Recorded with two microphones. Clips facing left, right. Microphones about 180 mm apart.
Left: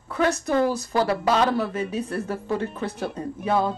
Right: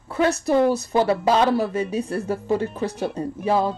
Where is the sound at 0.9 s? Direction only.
25° right (ahead or behind).